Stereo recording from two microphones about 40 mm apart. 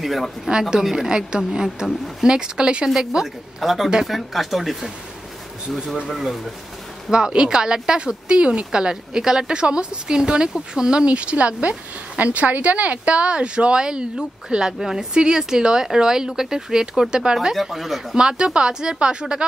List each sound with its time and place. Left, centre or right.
0.0 s speech: centre
0.5 s speech: centre
3.6 s speech: centre
6.0 s speech: centre
7.1 s speech: right
13.0 s speech: right
17.6 s speech: centre
18.1 s speech: right